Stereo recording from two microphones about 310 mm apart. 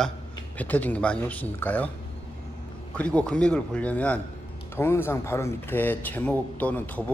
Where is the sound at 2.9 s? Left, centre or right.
Centre.